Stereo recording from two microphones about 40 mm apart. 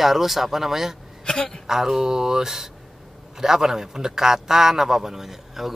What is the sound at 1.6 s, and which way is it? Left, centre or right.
A man's voice, centre.